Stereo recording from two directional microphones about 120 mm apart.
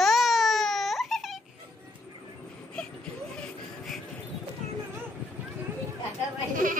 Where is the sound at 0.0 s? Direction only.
Centre (ahead or behind).